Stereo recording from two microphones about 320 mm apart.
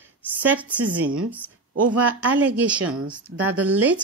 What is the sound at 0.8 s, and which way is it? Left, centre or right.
Speech, right.